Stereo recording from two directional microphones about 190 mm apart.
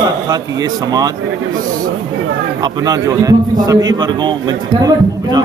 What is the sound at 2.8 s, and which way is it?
A man's voice, 20° right (ahead or behind).